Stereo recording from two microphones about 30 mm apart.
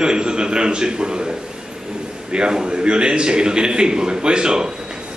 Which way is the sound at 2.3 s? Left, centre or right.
Right.